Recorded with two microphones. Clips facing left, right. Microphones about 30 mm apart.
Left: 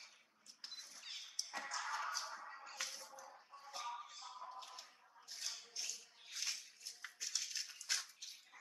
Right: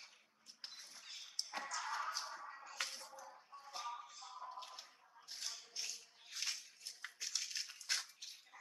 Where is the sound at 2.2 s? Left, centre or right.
Centre.